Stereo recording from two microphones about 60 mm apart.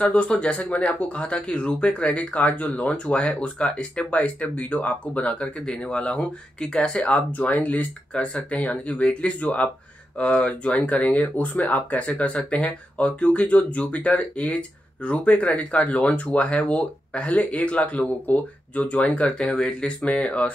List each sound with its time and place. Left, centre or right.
0.0 s speech: left
7.1 s speech: left